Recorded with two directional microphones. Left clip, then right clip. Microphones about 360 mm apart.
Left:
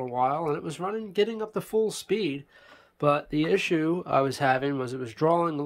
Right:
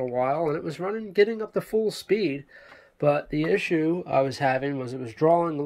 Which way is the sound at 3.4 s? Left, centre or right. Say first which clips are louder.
Right 1 dB; left.